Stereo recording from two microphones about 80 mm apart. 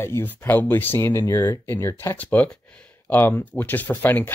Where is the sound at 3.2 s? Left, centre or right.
Left.